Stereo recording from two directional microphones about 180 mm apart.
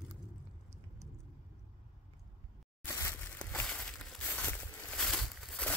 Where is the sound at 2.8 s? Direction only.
10° left (ahead or behind).